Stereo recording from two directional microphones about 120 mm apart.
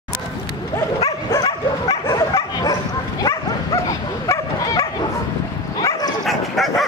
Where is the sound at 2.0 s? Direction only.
30° left (ahead or behind).